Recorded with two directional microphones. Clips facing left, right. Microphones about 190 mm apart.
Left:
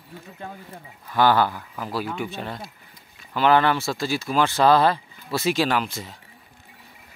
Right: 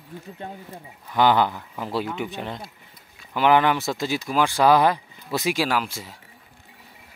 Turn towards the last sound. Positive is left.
turn(degrees=-10)  # may be behind; listen again after turning